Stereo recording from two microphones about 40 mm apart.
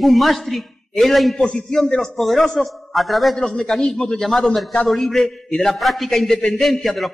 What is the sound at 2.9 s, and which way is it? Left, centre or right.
A man's voice, centre.